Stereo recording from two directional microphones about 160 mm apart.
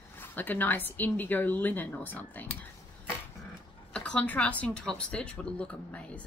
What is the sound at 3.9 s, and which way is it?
A woman's voice, 5° left (ahead or behind).